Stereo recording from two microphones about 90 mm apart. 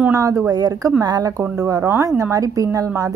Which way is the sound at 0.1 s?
35° right (ahead or behind).